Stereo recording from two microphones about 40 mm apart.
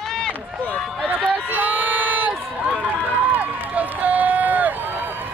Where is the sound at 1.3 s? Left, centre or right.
Right.